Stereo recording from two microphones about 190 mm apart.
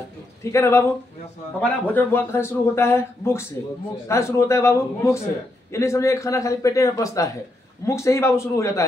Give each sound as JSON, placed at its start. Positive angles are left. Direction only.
{"t": 0.4, "sound": "a man's voice", "side_deg": 15}